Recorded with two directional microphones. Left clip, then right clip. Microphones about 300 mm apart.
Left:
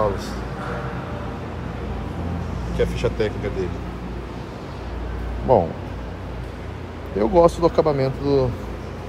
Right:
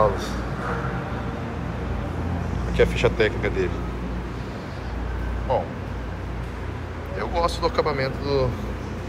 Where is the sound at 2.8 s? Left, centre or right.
Centre.